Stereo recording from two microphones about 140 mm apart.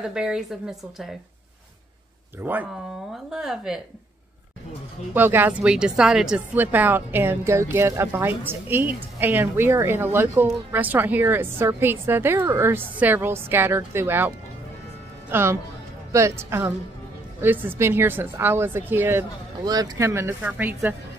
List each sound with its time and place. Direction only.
0.0 s a woman's voice: 5° right (ahead or behind)
2.4 s a woman's voice: 10° right (ahead or behind)
5.1 s a woman's voice: 15° right (ahead or behind)
19.6 s speech: 25° right (ahead or behind)